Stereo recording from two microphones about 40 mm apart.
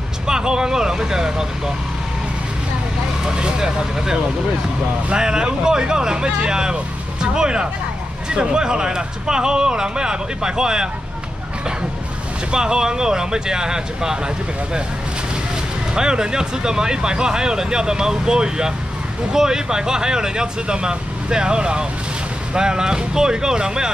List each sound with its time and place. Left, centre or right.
0.3 s speech: centre
3.3 s speech: centre
12.4 s speech: centre
15.9 s speech: centre